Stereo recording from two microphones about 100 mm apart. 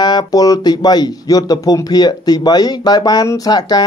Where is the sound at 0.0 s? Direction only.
40° left (ahead or behind).